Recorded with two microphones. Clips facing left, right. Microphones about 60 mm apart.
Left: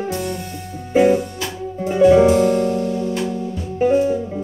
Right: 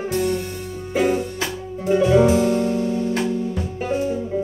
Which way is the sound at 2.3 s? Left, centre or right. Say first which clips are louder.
Left 3 dB; left.